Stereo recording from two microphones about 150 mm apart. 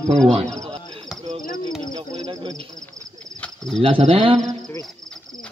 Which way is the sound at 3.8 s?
40° right (ahead or behind).